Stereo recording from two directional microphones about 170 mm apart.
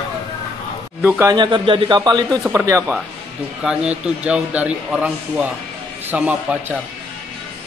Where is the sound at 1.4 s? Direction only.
30° right (ahead or behind); by 6.7 s 10° right (ahead or behind).